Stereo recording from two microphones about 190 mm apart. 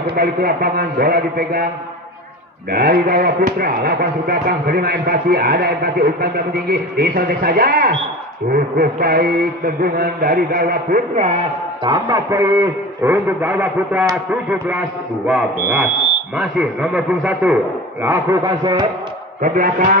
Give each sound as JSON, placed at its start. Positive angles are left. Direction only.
{"t": 0.0, "sound": "speech", "side_deg": -55}
{"t": 2.7, "sound": "speech", "side_deg": -55}
{"t": 11.8, "sound": "a man's voice", "side_deg": -25}
{"t": 12.4, "sound": "a man's voice", "side_deg": -10}
{"t": 19.4, "sound": "speech", "side_deg": -45}